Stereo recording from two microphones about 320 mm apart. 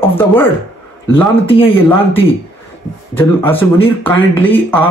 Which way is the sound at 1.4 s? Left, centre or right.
Centre.